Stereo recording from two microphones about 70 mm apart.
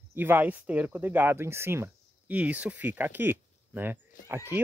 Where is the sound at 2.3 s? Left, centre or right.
Right.